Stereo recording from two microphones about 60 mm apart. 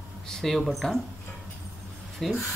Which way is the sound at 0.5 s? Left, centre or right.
Centre.